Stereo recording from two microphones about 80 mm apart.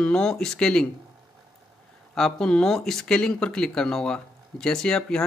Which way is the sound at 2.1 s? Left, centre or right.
Centre.